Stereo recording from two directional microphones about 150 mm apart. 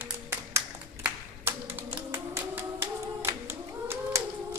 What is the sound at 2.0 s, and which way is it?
Hands, 15° right (ahead or behind).